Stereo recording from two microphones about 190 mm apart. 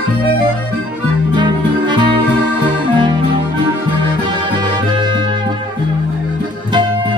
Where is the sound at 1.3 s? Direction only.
25° right (ahead or behind).